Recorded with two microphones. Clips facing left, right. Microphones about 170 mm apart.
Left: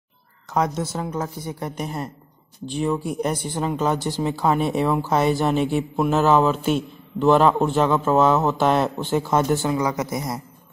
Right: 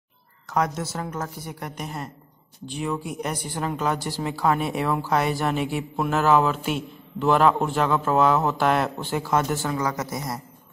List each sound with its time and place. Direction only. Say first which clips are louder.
0.5 s a woman's voice: left 2 dB; 20° left (ahead or behind)